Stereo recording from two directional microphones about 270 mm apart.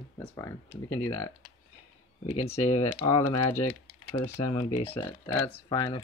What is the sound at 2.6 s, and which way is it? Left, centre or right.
Speech, left.